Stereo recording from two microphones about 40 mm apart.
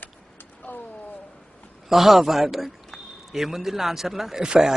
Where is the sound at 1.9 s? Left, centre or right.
Centre.